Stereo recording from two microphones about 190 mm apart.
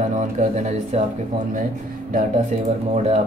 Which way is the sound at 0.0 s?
40° right (ahead or behind).